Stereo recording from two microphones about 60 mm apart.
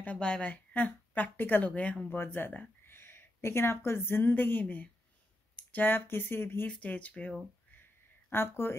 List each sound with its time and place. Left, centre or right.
0.2 s speech: centre
1.7 s speech: left
2.0 s a woman's voice: left
6.7 s speech: left
8.3 s speech: left